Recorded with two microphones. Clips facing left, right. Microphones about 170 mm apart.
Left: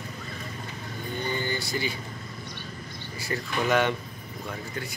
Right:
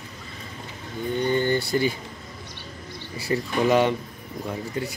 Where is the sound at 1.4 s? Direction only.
55° right (ahead or behind).